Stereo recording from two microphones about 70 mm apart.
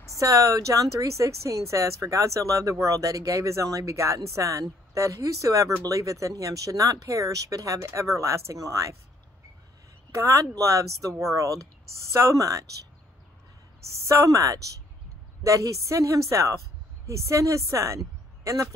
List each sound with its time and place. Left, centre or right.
0.2 s speech: right
10.1 s speech: right
14.0 s a woman's voice: right